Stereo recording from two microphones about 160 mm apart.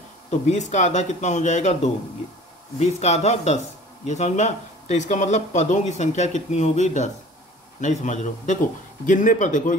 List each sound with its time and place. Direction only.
0.3 s speech: 45° left (ahead or behind)